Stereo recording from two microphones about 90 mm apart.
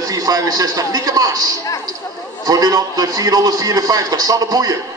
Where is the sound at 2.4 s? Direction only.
45° right (ahead or behind).